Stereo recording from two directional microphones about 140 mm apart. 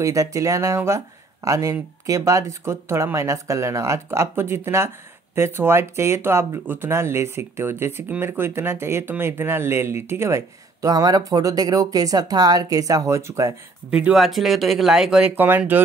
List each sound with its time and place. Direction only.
0.0 s speech: 20° right (ahead or behind)
13.8 s speech: 10° right (ahead or behind)